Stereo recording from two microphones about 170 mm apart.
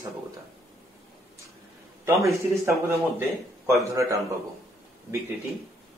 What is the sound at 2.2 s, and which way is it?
Speech, 15° right (ahead or behind).